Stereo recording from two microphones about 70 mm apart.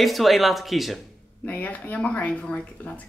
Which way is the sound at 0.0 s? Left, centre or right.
Centre.